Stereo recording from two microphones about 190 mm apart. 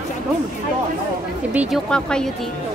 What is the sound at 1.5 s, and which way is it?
Speech, centre (ahead or behind).